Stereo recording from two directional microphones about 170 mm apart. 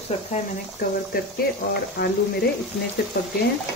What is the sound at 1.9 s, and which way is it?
Speech, 70° left (ahead or behind).